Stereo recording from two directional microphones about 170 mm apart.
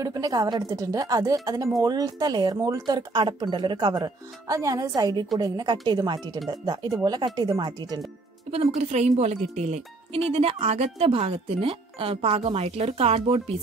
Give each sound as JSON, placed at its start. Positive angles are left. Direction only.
{"t": 0.0, "sound": "speech", "side_deg": -20}
{"t": 8.5, "sound": "speech", "side_deg": -40}